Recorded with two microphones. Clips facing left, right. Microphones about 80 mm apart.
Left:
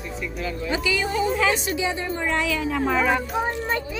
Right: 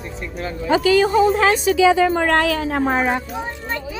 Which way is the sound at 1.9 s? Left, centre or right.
Right.